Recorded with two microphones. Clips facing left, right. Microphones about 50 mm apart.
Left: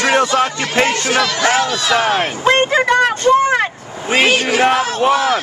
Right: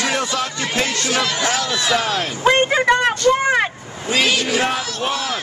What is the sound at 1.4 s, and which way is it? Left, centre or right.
Music, left.